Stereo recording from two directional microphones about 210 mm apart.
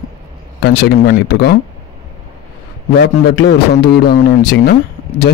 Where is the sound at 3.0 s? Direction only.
50° left (ahead or behind).